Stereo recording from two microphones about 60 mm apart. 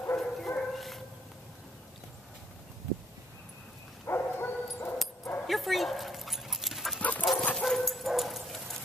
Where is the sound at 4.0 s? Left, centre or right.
Left.